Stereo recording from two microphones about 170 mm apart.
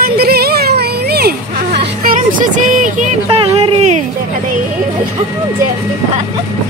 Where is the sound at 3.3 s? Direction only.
35° right (ahead or behind).